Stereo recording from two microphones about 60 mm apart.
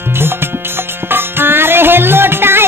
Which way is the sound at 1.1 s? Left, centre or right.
Right.